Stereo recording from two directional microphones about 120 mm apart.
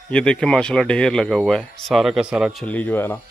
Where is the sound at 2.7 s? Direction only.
15° left (ahead or behind).